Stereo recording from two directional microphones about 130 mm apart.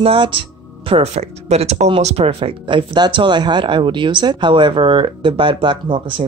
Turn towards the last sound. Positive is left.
turn(degrees=-40)  # may be behind; listen again after turning